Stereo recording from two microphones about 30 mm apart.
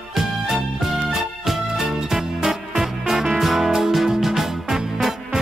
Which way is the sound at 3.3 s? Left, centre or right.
Centre.